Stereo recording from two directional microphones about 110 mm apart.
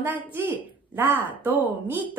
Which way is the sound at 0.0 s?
20° right (ahead or behind).